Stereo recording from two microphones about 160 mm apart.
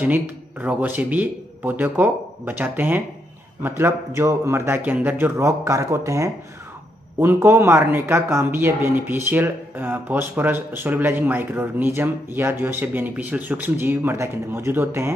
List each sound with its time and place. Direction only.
0.0 s speech: 10° right (ahead or behind)